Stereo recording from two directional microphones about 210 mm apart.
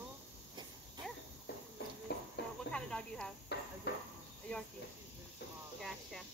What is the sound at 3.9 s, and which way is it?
Insect, 50° left (ahead or behind).